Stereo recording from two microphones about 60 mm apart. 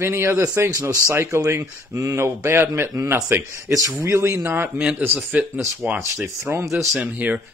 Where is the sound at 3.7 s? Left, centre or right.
Right.